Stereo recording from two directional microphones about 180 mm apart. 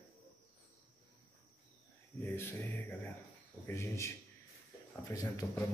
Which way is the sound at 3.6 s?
15° left (ahead or behind).